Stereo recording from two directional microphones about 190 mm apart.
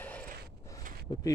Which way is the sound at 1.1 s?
20° left (ahead or behind).